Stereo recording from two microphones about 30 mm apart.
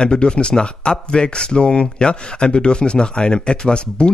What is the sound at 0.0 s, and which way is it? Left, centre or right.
Speech, left.